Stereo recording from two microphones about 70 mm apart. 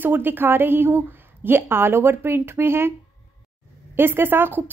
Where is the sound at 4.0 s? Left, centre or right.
Right.